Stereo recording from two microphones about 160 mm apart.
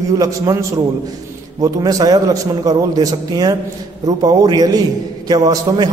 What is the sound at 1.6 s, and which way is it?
A man's voice, 20° right (ahead or behind).